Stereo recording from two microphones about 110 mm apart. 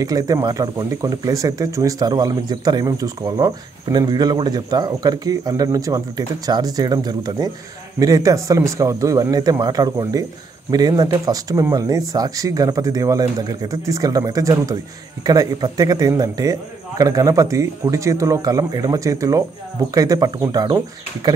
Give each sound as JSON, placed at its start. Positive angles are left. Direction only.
{"t": 0.0, "sound": "speech", "side_deg": -35}